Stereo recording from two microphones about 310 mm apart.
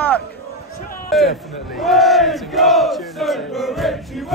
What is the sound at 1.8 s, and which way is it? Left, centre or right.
Battle cry, centre.